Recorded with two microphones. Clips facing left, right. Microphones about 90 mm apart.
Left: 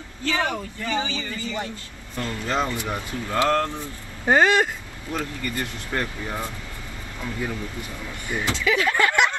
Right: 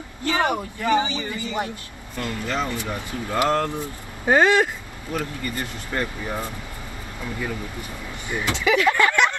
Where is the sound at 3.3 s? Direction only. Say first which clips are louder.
Even; 15° right (ahead or behind).